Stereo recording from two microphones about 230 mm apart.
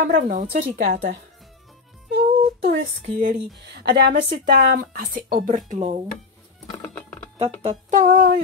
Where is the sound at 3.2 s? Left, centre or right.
Right.